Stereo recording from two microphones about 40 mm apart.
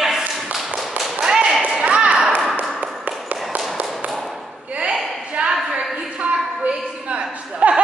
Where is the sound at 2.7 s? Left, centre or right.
Right.